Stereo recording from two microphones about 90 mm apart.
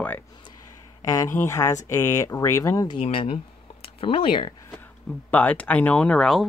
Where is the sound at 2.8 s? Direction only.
75° left (ahead or behind).